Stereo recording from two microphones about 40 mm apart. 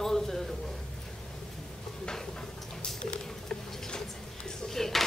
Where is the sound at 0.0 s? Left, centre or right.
Centre.